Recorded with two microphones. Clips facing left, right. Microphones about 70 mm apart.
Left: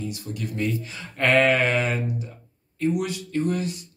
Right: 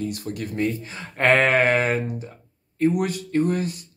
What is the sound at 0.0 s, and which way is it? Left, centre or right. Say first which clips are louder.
Speech: right 3 dB; right.